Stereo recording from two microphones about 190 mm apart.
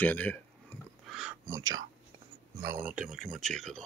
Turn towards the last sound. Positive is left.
turn(degrees=0)  # may be behind; listen again after turning